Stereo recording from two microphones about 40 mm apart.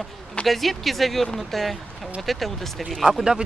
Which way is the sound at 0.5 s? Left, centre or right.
Centre.